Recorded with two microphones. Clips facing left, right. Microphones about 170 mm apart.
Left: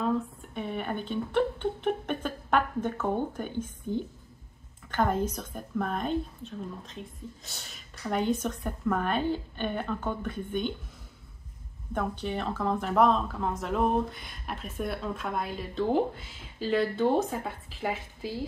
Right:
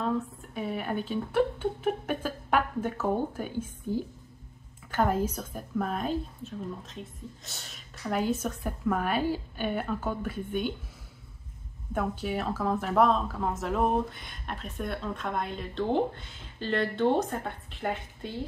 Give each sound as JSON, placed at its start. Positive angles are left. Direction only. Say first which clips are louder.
{"t": 0.0, "sound": "speech", "louder": "left 1 dB", "side_deg": 0}
{"t": 11.9, "sound": "speech", "louder": "right 1 dB", "side_deg": -5}